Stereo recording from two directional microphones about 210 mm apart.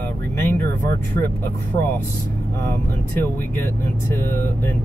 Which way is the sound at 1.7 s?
25° left (ahead or behind).